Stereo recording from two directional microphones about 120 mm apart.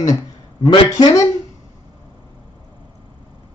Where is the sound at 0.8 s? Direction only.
30° left (ahead or behind).